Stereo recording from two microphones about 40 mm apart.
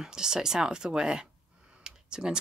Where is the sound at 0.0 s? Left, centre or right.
Centre.